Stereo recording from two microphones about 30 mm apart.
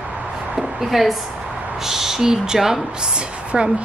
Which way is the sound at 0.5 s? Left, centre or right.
Centre.